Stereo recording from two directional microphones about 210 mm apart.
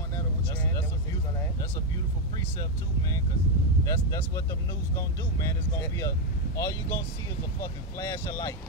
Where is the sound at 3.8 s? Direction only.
15° left (ahead or behind).